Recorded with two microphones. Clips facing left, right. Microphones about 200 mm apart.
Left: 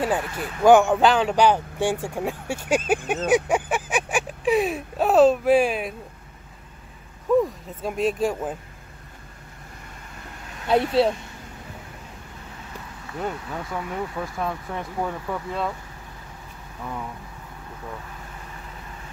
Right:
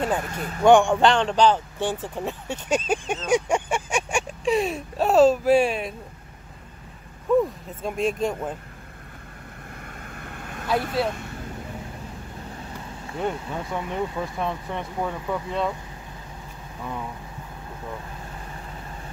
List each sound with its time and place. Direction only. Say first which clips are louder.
0.2 s speech: left 1 dB; 45° right (ahead or behind)
0.7 s speech: left 1 dB; 5° left (ahead or behind)
7.3 s speech: even; centre (ahead or behind)
10.1 s vehicle: right 4 dB; 55° right (ahead or behind)
10.7 s speech: left 5 dB; 25° left (ahead or behind)
13.5 s speech: right 1 dB; 25° right (ahead or behind)
13.8 s speech: right 2 dB; centre (ahead or behind)